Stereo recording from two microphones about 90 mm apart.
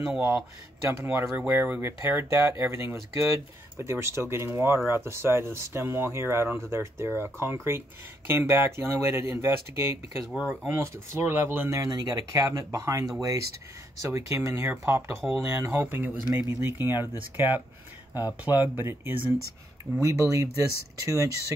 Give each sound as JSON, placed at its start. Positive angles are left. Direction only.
{"t": 0.1, "sound": "speech", "side_deg": -10}
{"t": 0.8, "sound": "speech", "side_deg": -25}
{"t": 10.2, "sound": "speech", "side_deg": -5}
{"t": 10.7, "sound": "speech", "side_deg": -25}
{"t": 11.8, "sound": "speech", "side_deg": -45}
{"t": 18.4, "sound": "speech", "side_deg": -20}
{"t": 20.0, "sound": "speech", "side_deg": -35}